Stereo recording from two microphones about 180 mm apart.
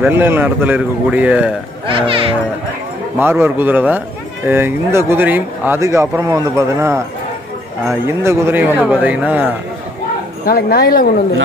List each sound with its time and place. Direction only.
0.0 s a man's voice: 10° right (ahead or behind)
1.9 s speech: 30° right (ahead or behind)
3.2 s a man's voice: 10° right (ahead or behind)
8.1 s a man's voice: 15° right (ahead or behind)
10.4 s speech: 60° left (ahead or behind)